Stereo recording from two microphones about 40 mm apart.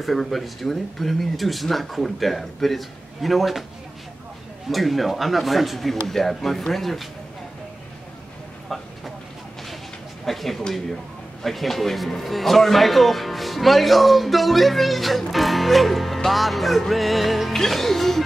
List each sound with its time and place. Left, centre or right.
0.0 s speech: centre
4.6 s speech: centre
8.6 s a sound: centre
10.2 s a sound: centre
11.4 s speech: centre
17.6 s music: centre